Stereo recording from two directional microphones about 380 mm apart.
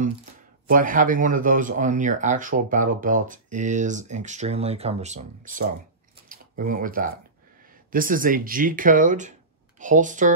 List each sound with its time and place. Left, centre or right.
0.7 s speech: right
6.2 s a sound: right
7.9 s speech: right